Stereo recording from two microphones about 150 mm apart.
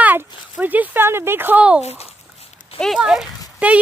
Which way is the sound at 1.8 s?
45° left (ahead or behind).